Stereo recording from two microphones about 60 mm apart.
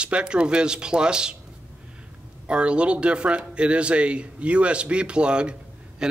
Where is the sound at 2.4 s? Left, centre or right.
Centre.